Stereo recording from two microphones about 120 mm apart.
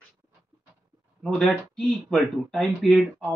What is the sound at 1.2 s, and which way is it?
Speech, centre (ahead or behind).